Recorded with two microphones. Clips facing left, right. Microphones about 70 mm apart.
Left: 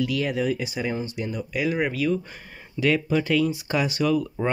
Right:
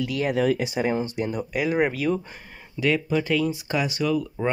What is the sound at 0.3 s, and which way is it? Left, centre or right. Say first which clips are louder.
Speech: right 3 dB; right.